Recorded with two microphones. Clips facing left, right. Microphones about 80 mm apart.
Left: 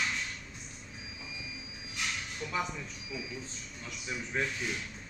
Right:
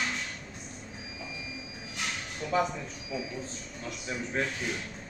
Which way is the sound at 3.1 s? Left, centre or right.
Right.